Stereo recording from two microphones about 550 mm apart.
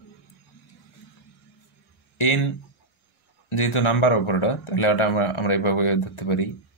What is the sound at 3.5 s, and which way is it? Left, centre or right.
Speech, left.